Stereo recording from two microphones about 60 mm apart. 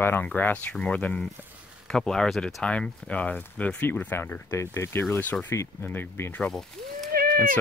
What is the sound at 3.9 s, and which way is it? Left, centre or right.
Speech, left.